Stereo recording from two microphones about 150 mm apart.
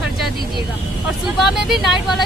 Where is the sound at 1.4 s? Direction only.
Centre (ahead or behind).